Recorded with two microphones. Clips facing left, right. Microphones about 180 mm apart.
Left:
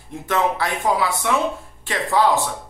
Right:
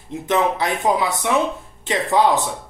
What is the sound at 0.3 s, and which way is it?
Speech, 20° right (ahead or behind).